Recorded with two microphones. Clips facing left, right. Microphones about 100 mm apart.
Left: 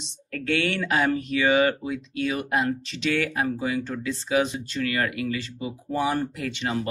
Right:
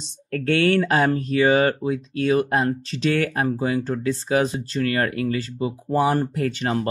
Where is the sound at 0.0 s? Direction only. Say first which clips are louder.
Right 7 dB; 40° right (ahead or behind).